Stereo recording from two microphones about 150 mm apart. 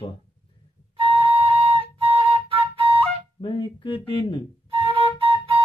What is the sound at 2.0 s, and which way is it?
Flute, 35° right (ahead or behind).